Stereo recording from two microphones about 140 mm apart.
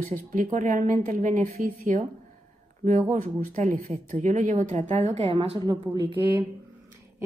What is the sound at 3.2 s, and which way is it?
A woman's voice, 65° right (ahead or behind).